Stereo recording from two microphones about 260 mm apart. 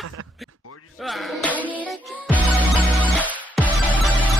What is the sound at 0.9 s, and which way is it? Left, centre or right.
Music, centre.